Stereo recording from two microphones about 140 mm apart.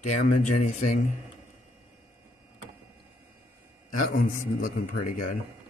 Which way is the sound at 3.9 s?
90° left.